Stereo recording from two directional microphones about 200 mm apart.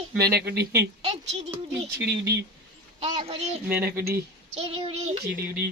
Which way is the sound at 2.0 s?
55° right (ahead or behind).